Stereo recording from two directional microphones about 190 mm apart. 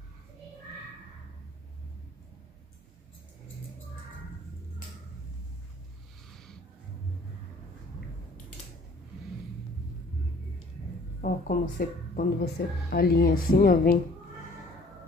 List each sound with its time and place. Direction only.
11.1 s speech: 45° left (ahead or behind)